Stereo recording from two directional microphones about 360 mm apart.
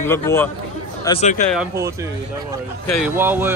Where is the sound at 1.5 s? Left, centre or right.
Centre.